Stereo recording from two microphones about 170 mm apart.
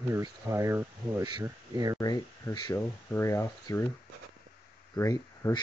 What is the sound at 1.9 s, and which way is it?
Speech, 20° left (ahead or behind).